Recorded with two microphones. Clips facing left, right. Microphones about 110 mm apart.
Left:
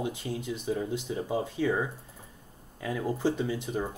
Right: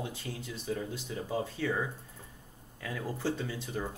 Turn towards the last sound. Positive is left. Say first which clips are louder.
# left 5 dB
turn(degrees=15)  # may be behind; listen again after turning